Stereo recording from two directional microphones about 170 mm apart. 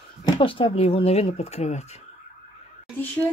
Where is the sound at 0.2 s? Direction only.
30° left (ahead or behind).